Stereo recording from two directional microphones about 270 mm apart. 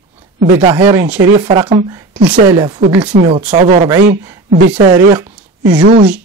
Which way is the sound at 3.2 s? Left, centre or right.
Right.